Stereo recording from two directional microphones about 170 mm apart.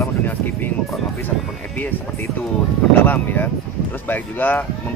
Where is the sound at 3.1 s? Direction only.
10° left (ahead or behind).